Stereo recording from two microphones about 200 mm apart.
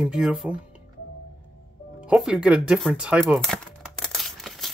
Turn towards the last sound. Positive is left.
turn(degrees=0)  # may be behind; listen again after turning